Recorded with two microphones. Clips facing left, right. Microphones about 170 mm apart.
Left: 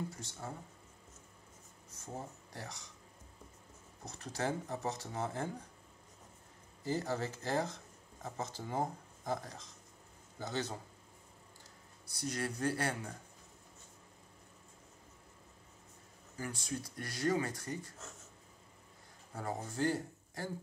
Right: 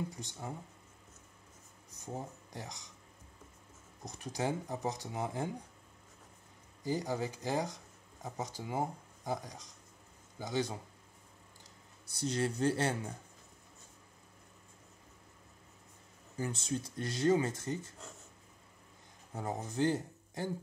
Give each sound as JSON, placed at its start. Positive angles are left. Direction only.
{"t": 0.1, "sound": "speech", "side_deg": -15}
{"t": 2.0, "sound": "speech", "side_deg": -20}
{"t": 4.0, "sound": "speech", "side_deg": -15}
{"t": 6.8, "sound": "speech", "side_deg": -15}
{"t": 12.1, "sound": "speech", "side_deg": -25}
{"t": 16.3, "sound": "speech", "side_deg": -25}
{"t": 19.3, "sound": "speech", "side_deg": -20}